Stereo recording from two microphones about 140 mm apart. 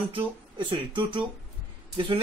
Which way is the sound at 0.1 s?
35° right (ahead or behind).